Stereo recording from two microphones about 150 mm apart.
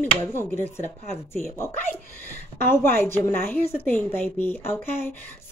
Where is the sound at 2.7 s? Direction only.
15° left (ahead or behind).